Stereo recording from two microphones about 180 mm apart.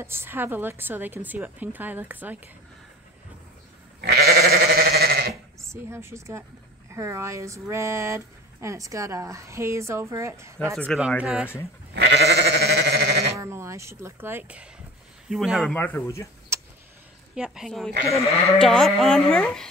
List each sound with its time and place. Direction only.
0.0 s speech: 15° right (ahead or behind)
4.0 s goat: 60° right (ahead or behind)
5.7 s speech: 15° right (ahead or behind)
11.9 s goat: 70° right (ahead or behind)
13.4 s speech: 15° right (ahead or behind)
15.7 s speech: 10° left (ahead or behind)
16.5 s vehicle: 15° right (ahead or behind)
17.4 s speech: centre (ahead or behind)